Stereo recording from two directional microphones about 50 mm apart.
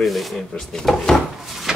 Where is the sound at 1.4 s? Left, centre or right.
Centre.